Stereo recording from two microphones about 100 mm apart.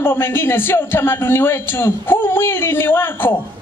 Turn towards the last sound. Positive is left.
turn(degrees=20)  # may be behind; listen again after turning